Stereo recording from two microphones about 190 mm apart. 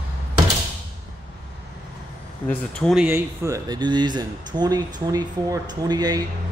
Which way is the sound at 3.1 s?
15° right (ahead or behind).